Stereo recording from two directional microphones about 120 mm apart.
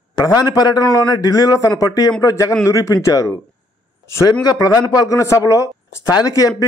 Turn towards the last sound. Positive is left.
turn(degrees=30)  # may be behind; listen again after turning